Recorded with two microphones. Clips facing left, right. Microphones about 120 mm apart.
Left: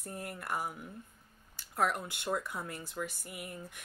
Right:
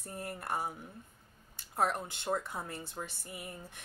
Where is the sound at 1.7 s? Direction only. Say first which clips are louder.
Even; 25° right (ahead or behind).